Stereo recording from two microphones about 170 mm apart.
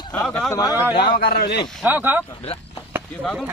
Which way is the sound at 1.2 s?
65° left (ahead or behind).